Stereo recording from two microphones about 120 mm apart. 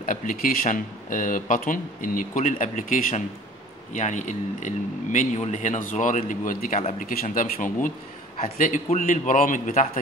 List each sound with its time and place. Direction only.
0.1 s speech: 90° left
6.8 s speech: 80° left
8.4 s speech: 75° left (ahead or behind)